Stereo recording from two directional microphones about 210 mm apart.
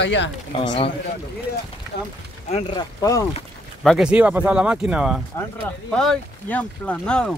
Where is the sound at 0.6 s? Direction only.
25° left (ahead or behind).